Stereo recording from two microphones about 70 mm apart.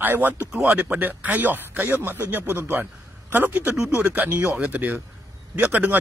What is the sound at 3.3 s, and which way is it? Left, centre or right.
A man's voice, right.